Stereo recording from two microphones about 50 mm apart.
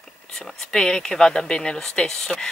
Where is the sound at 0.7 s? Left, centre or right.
Centre.